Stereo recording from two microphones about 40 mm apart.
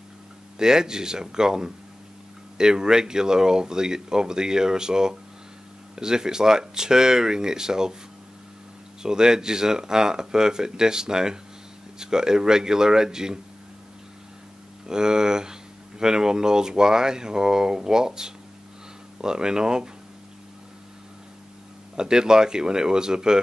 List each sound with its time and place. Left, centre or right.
0.6 s speech: centre
9.0 s speech: centre
14.9 s speech: centre
21.9 s speech: centre